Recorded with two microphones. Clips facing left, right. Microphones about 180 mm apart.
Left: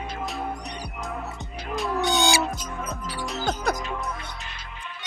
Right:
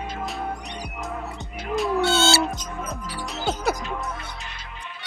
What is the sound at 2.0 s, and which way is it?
Music, 15° left (ahead or behind).